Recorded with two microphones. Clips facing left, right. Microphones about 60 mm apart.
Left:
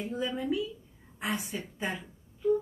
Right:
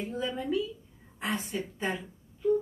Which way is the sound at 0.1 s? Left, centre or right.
Centre.